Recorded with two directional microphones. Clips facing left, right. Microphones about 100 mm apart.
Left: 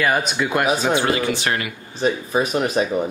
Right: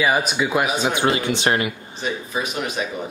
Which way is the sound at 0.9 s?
20° right (ahead or behind).